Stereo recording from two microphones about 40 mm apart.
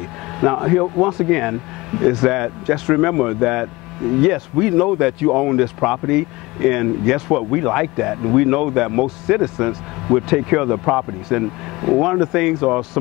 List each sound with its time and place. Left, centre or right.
0.4 s speech: centre
12.0 s speech: centre